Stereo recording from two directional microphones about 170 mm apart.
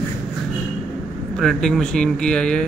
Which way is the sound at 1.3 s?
5° left (ahead or behind).